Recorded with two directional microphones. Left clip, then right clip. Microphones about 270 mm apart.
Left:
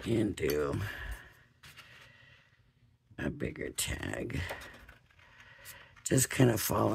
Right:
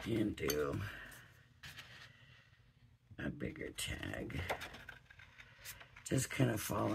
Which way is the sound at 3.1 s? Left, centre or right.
Left.